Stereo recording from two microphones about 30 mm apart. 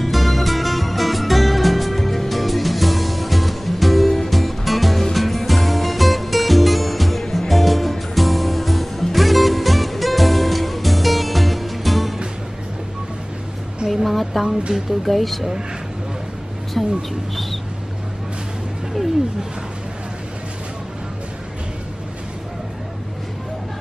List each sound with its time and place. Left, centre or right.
0.0 s music: centre
14.0 s a sound: centre
14.7 s speech: centre
15.0 s speech: centre
16.8 s speech: centre